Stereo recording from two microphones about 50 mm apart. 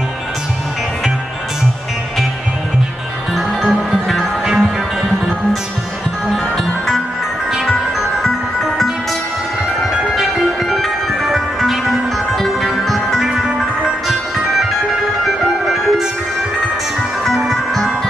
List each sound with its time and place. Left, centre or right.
3.3 s music: centre
6.3 s music: centre
9.9 s music: centre
15.2 s music: centre
17.2 s music: centre